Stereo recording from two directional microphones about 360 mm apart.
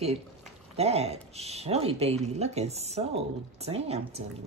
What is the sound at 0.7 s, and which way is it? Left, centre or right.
A woman's voice, centre.